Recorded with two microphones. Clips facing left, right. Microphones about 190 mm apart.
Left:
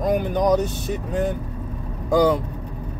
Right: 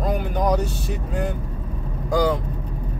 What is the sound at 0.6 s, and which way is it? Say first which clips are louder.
Speech: left 2 dB; 20° left (ahead or behind).